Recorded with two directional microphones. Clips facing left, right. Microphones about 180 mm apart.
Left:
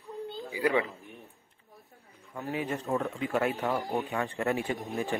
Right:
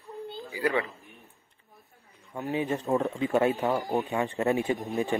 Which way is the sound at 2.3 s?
20° right (ahead or behind).